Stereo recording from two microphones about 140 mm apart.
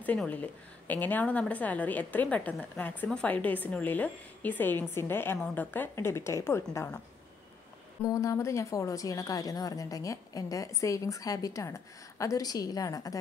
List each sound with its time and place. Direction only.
0.0 s a woman's voice: 10° left (ahead or behind)
8.0 s a woman's voice: 25° left (ahead or behind)